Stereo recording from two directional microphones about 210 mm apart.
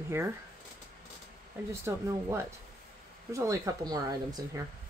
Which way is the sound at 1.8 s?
10° right (ahead or behind).